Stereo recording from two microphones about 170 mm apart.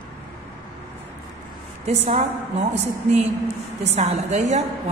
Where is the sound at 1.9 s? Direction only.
45° right (ahead or behind).